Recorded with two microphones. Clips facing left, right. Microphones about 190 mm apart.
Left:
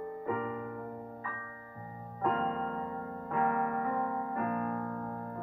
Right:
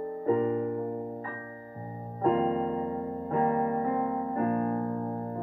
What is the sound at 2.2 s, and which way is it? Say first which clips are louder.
Music: right 7 dB; 35° right (ahead or behind).